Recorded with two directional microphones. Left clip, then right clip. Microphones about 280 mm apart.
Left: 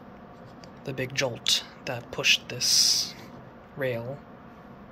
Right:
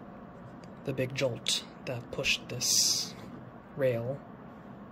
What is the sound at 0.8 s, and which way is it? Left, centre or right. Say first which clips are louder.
A man's voice: left 2 dB; centre.